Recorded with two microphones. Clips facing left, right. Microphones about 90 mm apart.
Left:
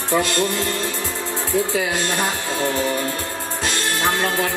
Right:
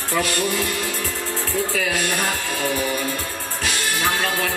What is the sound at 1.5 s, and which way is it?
A man's voice, 20° left (ahead or behind).